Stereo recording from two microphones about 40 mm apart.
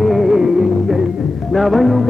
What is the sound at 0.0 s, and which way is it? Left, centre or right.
Music, centre.